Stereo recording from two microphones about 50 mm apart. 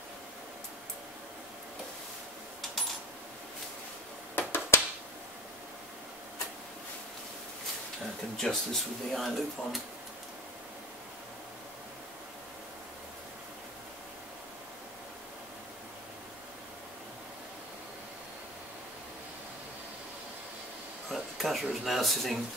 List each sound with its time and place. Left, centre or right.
4.4 s a sound: left
8.4 s speech: centre
21.1 s speech: centre